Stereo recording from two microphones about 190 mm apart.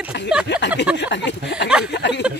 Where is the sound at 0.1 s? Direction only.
65° left (ahead or behind).